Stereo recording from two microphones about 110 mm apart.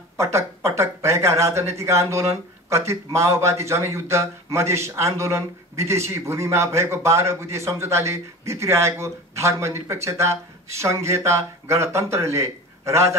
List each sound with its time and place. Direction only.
0.2 s speech: 25° right (ahead or behind)